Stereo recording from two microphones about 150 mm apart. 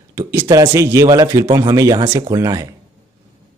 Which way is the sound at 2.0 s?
35° right (ahead or behind).